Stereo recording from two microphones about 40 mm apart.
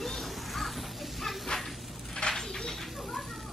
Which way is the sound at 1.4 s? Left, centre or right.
Centre.